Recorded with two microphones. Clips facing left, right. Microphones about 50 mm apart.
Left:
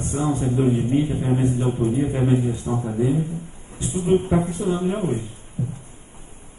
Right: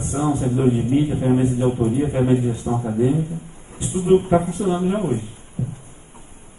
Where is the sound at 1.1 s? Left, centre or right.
Centre.